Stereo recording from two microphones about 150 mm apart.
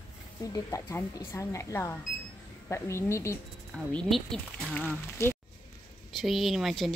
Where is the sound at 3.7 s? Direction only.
5° left (ahead or behind).